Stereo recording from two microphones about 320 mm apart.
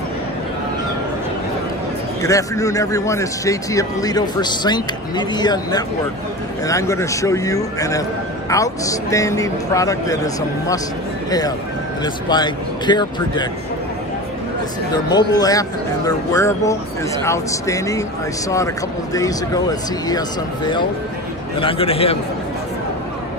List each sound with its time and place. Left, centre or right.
2.2 s a man's voice: centre
14.9 s a man's voice: centre
19.1 s a man's voice: centre
21.5 s a man's voice: centre